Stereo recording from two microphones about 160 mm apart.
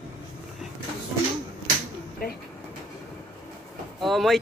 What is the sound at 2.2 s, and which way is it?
Speech, 65° left (ahead or behind).